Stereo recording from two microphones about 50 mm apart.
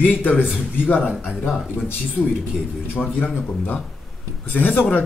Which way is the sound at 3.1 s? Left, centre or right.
Left.